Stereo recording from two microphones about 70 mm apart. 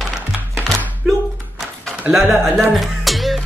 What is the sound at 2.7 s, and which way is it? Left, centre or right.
Music, centre.